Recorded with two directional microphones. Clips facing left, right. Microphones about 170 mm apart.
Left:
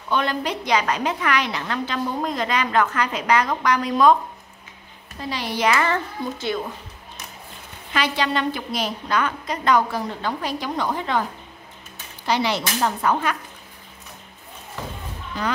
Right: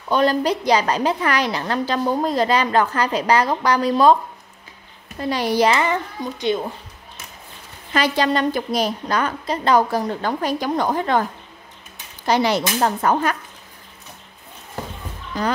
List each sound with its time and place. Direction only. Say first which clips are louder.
0.1 s a woman's voice: right 6 dB; 35° right (ahead or behind)
5.3 s a woman's voice: right 5 dB; 45° right (ahead or behind)
5.8 s speech: right 1 dB; 20° right (ahead or behind)
7.9 s a woman's voice: right 4 dB; 40° right (ahead or behind)
12.3 s speech: right 4 dB; 45° right (ahead or behind)
15.3 s a woman's voice: right 4 dB; 40° right (ahead or behind)